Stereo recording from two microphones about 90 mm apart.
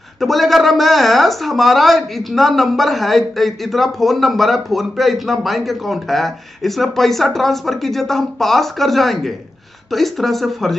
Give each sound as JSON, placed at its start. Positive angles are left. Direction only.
{"t": 0.2, "sound": "speech", "side_deg": 0}